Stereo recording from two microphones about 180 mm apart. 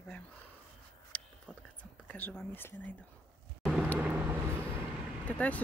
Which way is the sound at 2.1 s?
5° left (ahead or behind).